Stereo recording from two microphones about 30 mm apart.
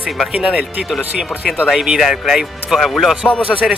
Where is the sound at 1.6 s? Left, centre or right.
Centre.